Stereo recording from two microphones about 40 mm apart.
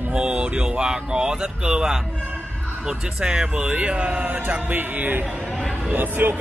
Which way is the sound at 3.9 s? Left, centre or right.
Right.